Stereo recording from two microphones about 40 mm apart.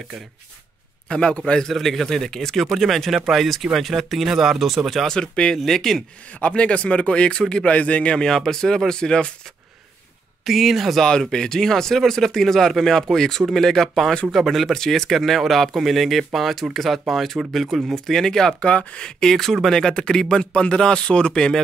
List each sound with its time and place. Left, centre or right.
1.0 s speech: left
1.7 s speech: centre
5.0 s speech: centre
5.7 s speech: centre
6.5 s speech: left
7.7 s a man's voice: left
8.2 s speech: centre
10.4 s speech: centre
11.1 s speech: centre
18.6 s a man's voice: left
19.0 s speech: centre
19.3 s speech: centre